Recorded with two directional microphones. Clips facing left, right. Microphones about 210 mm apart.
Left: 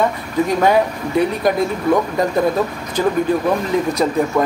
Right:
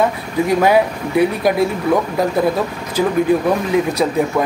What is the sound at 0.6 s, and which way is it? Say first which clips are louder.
Speech: right 2 dB; 5° right (ahead or behind).